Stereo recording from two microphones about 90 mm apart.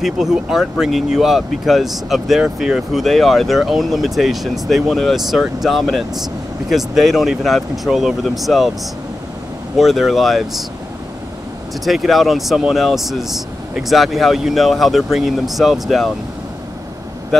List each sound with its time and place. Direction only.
0.0 s speech: 5° right (ahead or behind)
9.8 s speech: 5° right (ahead or behind)
11.8 s speech: centre (ahead or behind)